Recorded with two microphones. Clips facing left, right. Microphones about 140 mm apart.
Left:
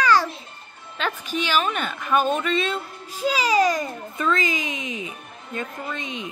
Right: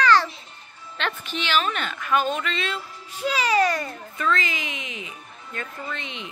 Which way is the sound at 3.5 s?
15° left (ahead or behind).